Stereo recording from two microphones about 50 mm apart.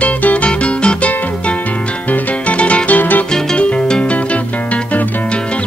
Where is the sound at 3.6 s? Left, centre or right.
Left.